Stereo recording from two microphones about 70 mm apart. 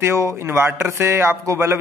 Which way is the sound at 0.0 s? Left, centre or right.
Right.